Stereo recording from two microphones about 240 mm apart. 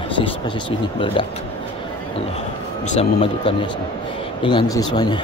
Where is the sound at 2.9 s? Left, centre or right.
Left.